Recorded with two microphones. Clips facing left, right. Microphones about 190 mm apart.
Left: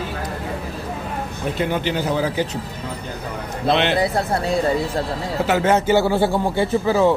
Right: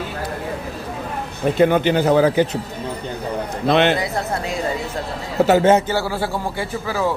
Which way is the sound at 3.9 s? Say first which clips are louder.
Left 3 dB; 35° left (ahead or behind).